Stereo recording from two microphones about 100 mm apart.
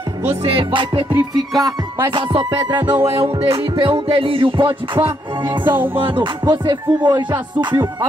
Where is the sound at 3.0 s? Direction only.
70° right (ahead or behind).